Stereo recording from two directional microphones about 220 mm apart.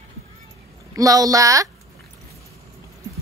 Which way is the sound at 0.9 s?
15° right (ahead or behind).